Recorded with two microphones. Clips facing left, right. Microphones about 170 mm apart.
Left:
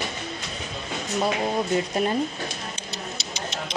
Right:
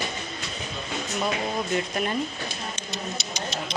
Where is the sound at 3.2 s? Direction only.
25° left (ahead or behind).